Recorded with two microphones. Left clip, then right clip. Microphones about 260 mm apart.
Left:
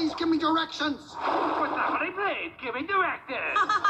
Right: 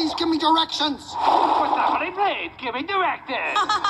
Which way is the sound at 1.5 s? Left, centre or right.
Right.